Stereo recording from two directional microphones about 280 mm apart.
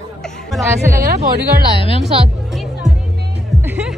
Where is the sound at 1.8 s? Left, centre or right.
Centre.